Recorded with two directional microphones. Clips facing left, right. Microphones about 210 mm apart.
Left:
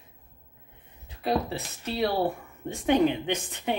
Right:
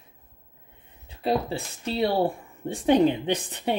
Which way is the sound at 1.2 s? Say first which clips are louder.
Right 2 dB; 30° right (ahead or behind).